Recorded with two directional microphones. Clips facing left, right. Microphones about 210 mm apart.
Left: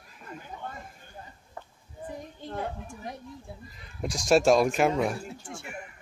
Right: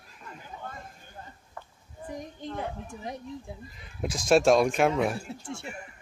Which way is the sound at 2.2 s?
20° right (ahead or behind).